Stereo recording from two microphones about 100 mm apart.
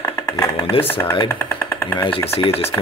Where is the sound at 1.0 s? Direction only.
30° left (ahead or behind).